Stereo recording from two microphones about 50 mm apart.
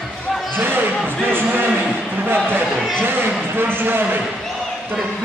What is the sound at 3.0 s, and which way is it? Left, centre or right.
A man's voice, right.